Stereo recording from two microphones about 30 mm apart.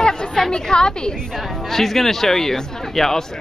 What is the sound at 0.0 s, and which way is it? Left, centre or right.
Chatter, left.